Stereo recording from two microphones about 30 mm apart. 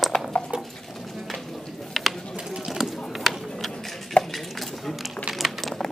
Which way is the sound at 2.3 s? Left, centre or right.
Right.